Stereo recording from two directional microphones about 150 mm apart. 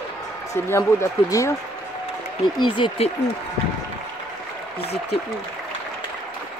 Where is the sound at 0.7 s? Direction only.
20° left (ahead or behind).